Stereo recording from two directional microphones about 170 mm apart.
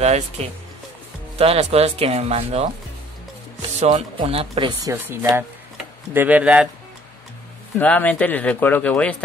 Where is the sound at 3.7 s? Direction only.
40° right (ahead or behind).